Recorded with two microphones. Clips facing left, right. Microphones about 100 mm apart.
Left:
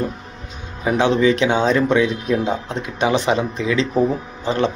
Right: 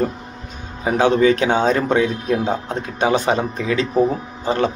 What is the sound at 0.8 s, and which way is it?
A man's voice, 40° right (ahead or behind).